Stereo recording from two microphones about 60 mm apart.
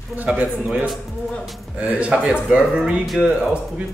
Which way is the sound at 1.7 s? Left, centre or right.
Centre.